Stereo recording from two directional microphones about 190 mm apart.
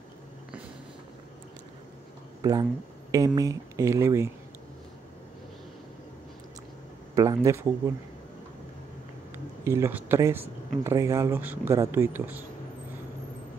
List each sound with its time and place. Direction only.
2.4 s speech: 15° right (ahead or behind)
7.2 s speech: 15° right (ahead or behind)
9.7 s speech: 10° right (ahead or behind)